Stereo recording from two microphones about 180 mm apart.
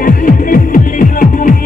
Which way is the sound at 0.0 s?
50° left (ahead or behind).